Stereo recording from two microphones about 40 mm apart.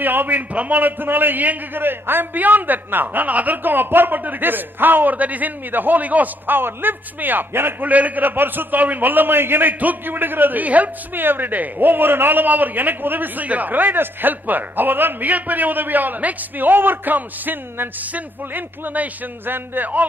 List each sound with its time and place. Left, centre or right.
0.0 s a man's voice: right
7.8 s a man's voice: right
10.6 s a woman's voice: right
11.2 s a man's voice: right
19.4 s a man's voice: right